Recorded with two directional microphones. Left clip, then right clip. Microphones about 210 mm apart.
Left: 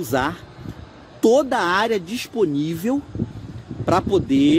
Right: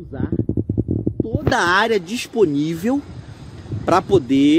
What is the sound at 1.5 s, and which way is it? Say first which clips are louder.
Speech: right 3 dB; 5° left (ahead or behind).